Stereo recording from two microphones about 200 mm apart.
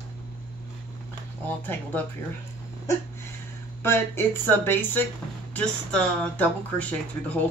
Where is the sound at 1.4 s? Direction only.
10° left (ahead or behind).